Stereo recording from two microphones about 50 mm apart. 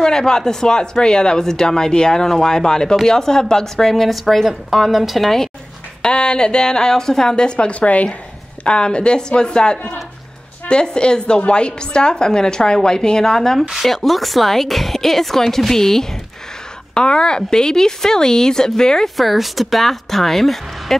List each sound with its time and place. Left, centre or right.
0.0 s speech: centre
6.0 s a woman's voice: centre
19.1 s a woman's voice: centre